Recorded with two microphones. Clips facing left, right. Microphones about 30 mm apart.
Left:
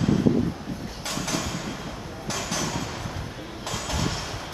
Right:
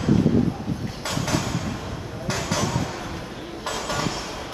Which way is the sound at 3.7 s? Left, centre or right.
Right.